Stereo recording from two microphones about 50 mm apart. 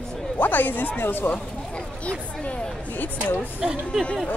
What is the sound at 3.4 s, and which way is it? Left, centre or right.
Speech, centre.